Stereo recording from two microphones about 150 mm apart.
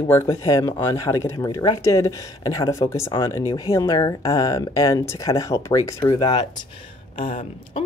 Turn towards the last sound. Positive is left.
turn(degrees=40)  # may be behind; listen again after turning